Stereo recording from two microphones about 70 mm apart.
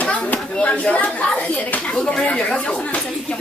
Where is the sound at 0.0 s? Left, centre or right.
Centre.